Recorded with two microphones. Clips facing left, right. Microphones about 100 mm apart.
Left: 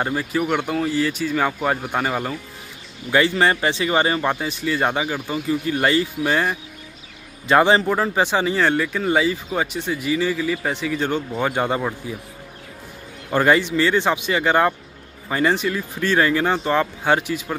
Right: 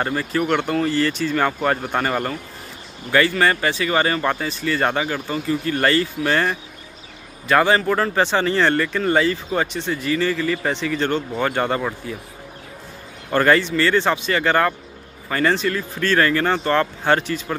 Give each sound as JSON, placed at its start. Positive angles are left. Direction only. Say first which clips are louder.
{"t": 0.0, "sound": "speech", "louder": "even", "side_deg": 10}
{"t": 3.1, "sound": "speech", "louder": "even", "side_deg": 20}
{"t": 7.4, "sound": "speech", "louder": "left 1 dB", "side_deg": 20}
{"t": 13.3, "sound": "speech", "louder": "right 1 dB", "side_deg": 10}